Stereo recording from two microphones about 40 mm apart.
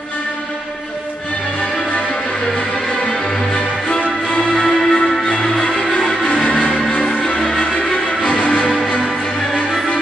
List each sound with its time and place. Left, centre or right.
3.1 s music: left
4.6 s music: centre
8.2 s music: left